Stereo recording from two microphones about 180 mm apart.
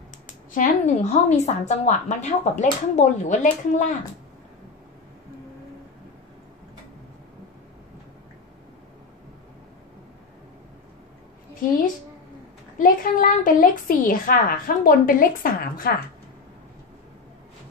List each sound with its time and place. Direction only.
0.5 s a woman's voice: 45° left (ahead or behind)
12.7 s a woman's voice: 50° left (ahead or behind)